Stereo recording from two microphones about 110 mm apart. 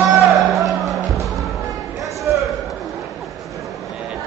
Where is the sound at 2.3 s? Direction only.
20° right (ahead or behind).